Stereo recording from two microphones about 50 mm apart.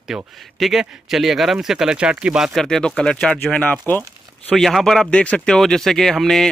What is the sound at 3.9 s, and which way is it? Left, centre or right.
Speech, left.